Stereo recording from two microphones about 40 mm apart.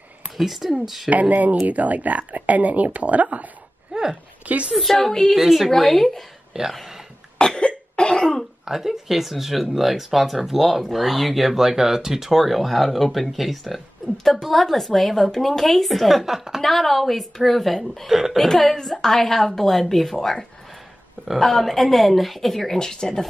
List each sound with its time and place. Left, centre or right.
0.4 s speech: centre
1.3 s speech: right
3.9 s a sound: centre
4.5 s speech: right
4.7 s speech: centre
6.5 s speech: centre
7.3 s cough: left
8.6 s speech: centre
16.6 s a woman's voice: centre
22.8 s a woman's voice: centre